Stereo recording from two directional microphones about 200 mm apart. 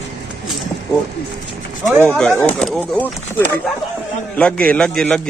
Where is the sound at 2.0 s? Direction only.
5° left (ahead or behind).